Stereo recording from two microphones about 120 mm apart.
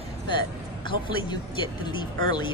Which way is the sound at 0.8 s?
40° left (ahead or behind).